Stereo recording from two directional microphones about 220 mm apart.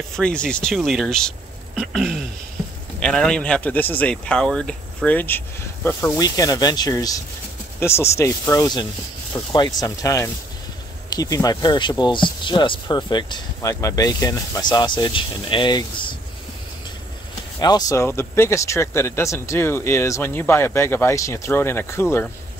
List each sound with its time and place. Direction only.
0.1 s speech: 5° left (ahead or behind); by 16.2 s 20° left (ahead or behind)
17.6 s speech: 15° left (ahead or behind)